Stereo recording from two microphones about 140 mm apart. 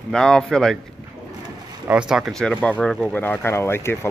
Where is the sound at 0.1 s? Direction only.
5° left (ahead or behind).